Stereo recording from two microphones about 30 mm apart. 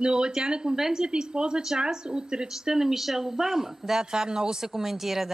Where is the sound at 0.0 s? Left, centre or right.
Right.